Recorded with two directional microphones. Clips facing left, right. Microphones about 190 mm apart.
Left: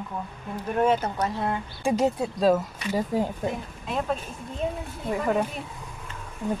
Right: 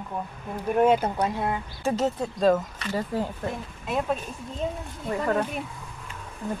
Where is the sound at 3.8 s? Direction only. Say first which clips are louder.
Right 1 dB; 5° right (ahead or behind).